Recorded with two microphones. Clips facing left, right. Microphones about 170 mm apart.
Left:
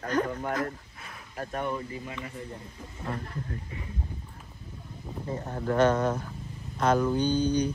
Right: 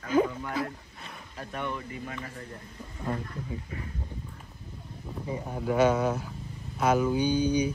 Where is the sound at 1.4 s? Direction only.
45° left (ahead or behind).